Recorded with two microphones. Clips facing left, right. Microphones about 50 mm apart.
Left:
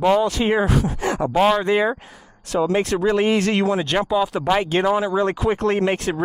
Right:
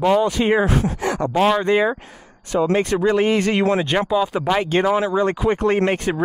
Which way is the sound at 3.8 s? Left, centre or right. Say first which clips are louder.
Right 1 dB; centre.